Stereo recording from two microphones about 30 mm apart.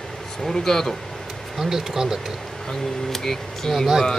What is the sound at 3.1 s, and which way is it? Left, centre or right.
Speech, centre.